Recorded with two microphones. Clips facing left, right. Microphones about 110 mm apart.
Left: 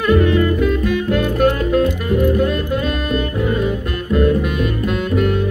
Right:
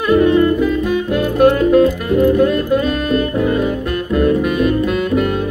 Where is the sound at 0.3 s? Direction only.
25° right (ahead or behind).